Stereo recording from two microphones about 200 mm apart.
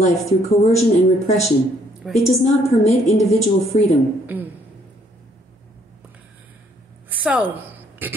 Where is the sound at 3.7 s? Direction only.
30° left (ahead or behind).